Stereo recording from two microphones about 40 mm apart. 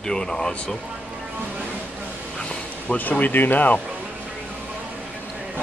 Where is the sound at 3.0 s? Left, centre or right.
Left.